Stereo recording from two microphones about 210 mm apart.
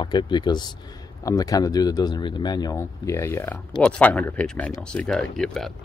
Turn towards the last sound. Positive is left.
turn(degrees=0)  # may be behind; listen again after turning